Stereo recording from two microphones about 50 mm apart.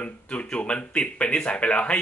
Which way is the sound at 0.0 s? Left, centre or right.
Left.